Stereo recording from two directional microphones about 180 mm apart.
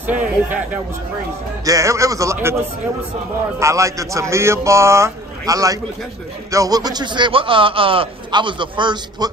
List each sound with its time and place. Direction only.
0.0 s a sound: 10° right (ahead or behind)
1.6 s speech: 20° right (ahead or behind)
3.5 s a man's voice: 15° right (ahead or behind)